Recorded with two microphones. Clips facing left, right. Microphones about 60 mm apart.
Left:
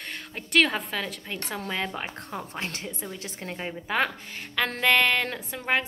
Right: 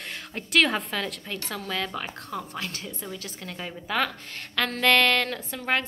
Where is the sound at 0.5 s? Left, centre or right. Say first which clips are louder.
Even; centre.